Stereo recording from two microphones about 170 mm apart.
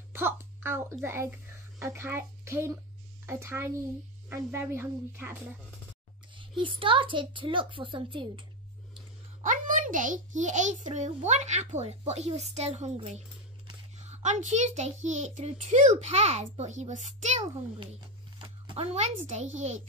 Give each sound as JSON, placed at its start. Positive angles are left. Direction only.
{"t": 0.1, "sound": "a child's voice", "side_deg": -15}
{"t": 6.3, "sound": "a child's voice", "side_deg": -30}
{"t": 9.4, "sound": "a child's voice", "side_deg": -50}
{"t": 18.4, "sound": "a sound", "side_deg": -30}
{"t": 18.9, "sound": "a child's voice", "side_deg": -40}